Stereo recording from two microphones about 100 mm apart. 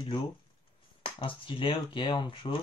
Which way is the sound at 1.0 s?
60° left (ahead or behind).